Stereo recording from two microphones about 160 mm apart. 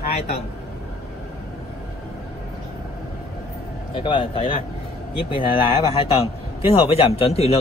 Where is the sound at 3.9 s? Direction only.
30° left (ahead or behind).